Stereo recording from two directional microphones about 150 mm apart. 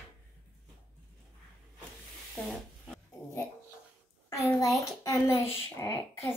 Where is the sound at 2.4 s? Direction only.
Centre (ahead or behind).